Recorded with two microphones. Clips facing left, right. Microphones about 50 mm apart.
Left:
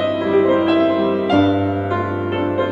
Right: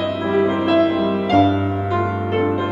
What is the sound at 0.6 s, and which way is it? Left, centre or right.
Music, centre.